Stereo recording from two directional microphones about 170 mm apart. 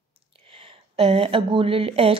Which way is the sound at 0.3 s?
30° right (ahead or behind).